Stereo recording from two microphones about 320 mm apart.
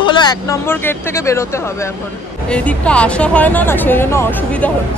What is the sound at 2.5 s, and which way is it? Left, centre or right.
Speech, centre.